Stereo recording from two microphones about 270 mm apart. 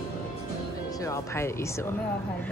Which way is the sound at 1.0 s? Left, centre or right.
Centre.